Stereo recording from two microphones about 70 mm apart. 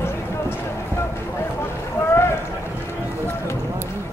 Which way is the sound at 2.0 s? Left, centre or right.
Left.